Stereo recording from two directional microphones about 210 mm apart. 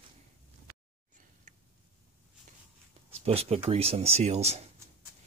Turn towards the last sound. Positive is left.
turn(degrees=-30)  # may be behind; listen again after turning